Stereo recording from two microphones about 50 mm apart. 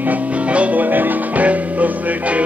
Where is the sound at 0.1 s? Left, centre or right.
Right.